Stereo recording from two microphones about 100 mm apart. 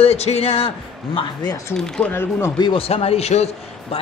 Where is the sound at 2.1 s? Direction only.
25° left (ahead or behind).